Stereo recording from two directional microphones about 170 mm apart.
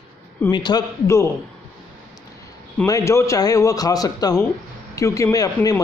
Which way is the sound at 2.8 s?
20° left (ahead or behind).